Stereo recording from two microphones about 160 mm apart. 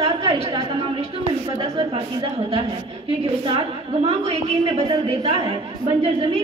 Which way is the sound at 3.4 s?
35° right (ahead or behind).